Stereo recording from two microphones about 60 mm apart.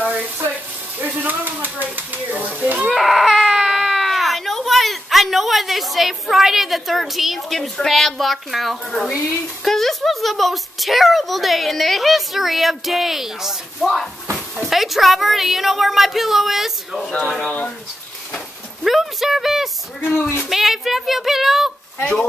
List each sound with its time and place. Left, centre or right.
0.0 s bathtub: right
0.9 s a sound: right
2.9 s baby cry: centre
7.7 s a woman's voice: centre
18.9 s a sound: centre
20.0 s speech: left
20.4 s a woman's voice: centre